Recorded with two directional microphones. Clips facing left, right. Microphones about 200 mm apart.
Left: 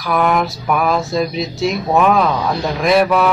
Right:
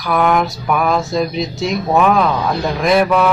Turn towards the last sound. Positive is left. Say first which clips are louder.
# even
turn(degrees=0)  # may be behind; listen again after turning